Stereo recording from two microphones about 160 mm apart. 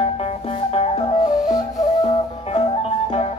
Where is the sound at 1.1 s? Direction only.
50° left (ahead or behind).